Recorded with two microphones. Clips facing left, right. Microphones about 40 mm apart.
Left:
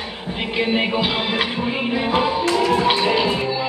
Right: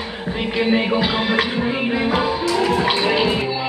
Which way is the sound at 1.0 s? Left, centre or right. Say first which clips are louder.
Right 2 dB; centre.